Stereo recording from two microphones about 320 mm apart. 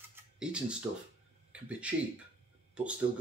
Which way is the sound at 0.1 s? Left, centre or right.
Centre.